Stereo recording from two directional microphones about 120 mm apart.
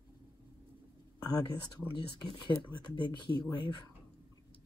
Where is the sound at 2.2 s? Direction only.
40° left (ahead or behind).